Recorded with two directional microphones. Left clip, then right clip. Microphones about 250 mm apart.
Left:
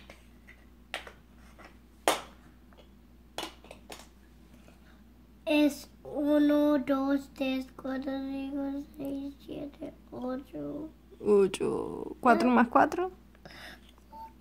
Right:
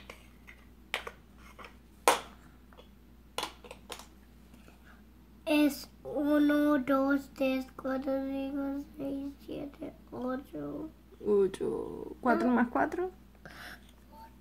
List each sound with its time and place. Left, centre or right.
5.4 s child singing: centre
11.2 s speech: left
13.4 s a sound: centre